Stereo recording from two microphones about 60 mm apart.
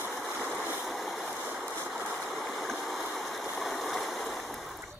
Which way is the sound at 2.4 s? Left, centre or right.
Centre.